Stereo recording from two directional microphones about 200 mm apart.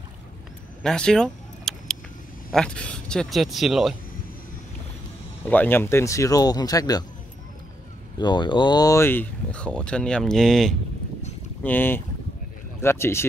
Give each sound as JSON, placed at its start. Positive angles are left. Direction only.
{"t": 0.8, "sound": "vehicle", "side_deg": 5}
{"t": 2.5, "sound": "speech", "side_deg": 5}
{"t": 5.4, "sound": "speech", "side_deg": 10}
{"t": 8.2, "sound": "speech", "side_deg": 20}